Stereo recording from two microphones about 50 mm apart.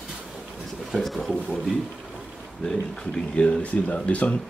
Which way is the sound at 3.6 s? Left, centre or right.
Left.